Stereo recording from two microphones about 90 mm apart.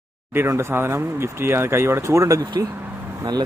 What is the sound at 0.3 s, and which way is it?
Speech, 25° right (ahead or behind).